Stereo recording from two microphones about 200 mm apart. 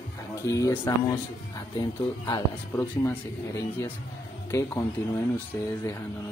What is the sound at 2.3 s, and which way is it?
Speech, 15° left (ahead or behind).